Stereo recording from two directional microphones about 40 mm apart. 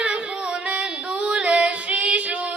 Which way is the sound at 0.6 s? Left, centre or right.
Right.